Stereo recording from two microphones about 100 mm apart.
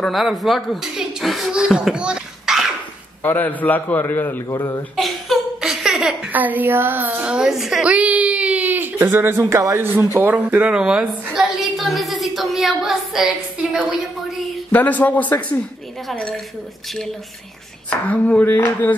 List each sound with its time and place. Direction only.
0.0 s speech: centre (ahead or behind)
3.2 s a man's voice: 20° left (ahead or behind)
4.5 s a man's voice: 30° left (ahead or behind)
4.9 s a sound: centre (ahead or behind)
6.3 s speech: 15° right (ahead or behind)
11.3 s a sound: centre (ahead or behind)
14.7 s speech: 15° left (ahead or behind)
16.1 s a woman's voice: 5° left (ahead or behind)
17.8 s speech: 15° left (ahead or behind)